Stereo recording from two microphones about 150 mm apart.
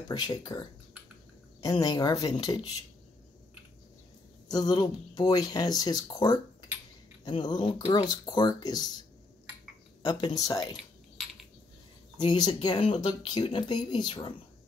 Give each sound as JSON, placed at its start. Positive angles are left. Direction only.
{"t": 0.1, "sound": "speech", "side_deg": 25}
{"t": 4.5, "sound": "speech", "side_deg": 25}
{"t": 10.0, "sound": "speech", "side_deg": 25}
{"t": 12.2, "sound": "speech", "side_deg": 30}